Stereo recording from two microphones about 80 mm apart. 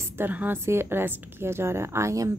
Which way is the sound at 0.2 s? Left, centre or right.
Right.